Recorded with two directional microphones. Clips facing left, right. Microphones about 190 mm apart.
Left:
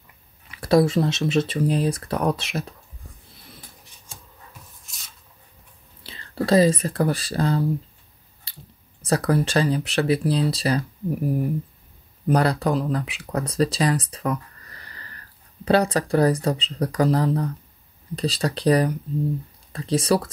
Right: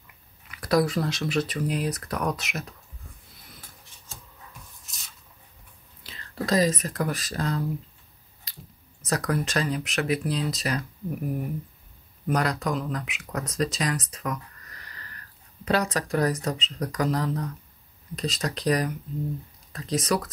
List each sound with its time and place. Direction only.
0.5 s speech: 25° left (ahead or behind)
4.8 s rub: centre (ahead or behind)
6.0 s speech: 30° left (ahead or behind)
8.5 s a sound: 30° left (ahead or behind)
9.0 s speech: 30° left (ahead or behind)